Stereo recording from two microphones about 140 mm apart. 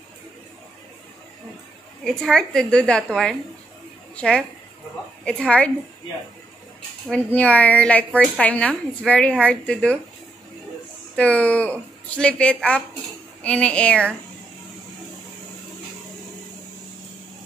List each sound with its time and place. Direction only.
2.0 s a woman's voice: 5° left (ahead or behind)
7.3 s a woman's voice: 10° left (ahead or behind)
11.1 s a woman's voice: 10° left (ahead or behind)